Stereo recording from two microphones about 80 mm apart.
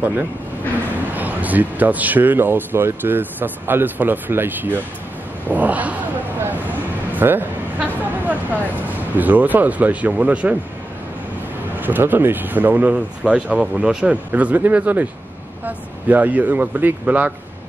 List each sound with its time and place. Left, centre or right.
0.0 s speech: right
7.2 s speech: right
11.8 s speech: right